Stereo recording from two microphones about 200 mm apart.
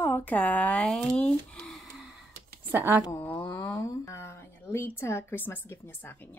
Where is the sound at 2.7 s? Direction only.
10° right (ahead or behind).